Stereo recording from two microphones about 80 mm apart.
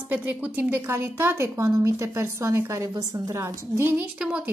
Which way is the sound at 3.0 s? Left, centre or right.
Right.